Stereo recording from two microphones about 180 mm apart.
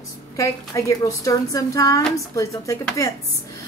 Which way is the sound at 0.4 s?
15° left (ahead or behind).